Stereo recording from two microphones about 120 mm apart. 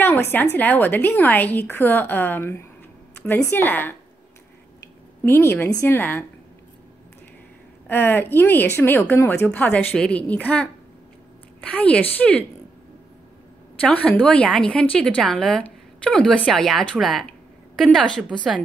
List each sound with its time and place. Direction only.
0.0 s a woman's voice: 15° left (ahead or behind)
5.2 s a woman's voice: 20° left (ahead or behind)
7.9 s a woman's voice: 15° left (ahead or behind)
13.7 s a woman's voice: 10° left (ahead or behind)